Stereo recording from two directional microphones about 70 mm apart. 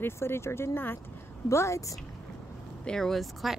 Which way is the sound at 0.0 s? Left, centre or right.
Left.